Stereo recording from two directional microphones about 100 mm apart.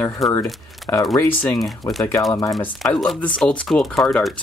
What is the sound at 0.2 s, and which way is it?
Speech, centre (ahead or behind).